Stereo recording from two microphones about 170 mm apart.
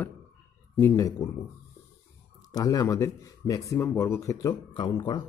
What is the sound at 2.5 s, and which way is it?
Speech, 20° left (ahead or behind).